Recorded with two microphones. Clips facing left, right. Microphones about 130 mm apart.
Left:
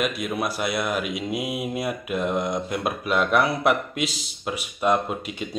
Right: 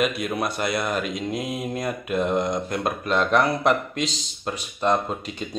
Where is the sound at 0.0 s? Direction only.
Centre (ahead or behind).